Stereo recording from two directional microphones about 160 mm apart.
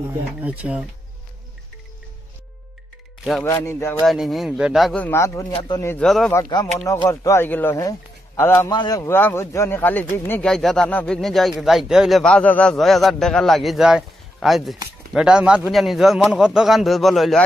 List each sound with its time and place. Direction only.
0.4 s speech: 10° right (ahead or behind)
3.4 s a man's voice: 15° left (ahead or behind)
4.0 s a man's voice: centre (ahead or behind)
5.0 s a man's voice: 15° left (ahead or behind)
5.5 s speech: 30° left (ahead or behind)
5.9 s a man's voice: 5° left (ahead or behind)
6.8 s a man's voice: 20° left (ahead or behind)
10.5 s a man's voice: 5° left (ahead or behind)